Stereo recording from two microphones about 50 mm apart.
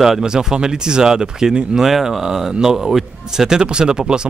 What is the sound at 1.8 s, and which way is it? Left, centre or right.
Speech, centre.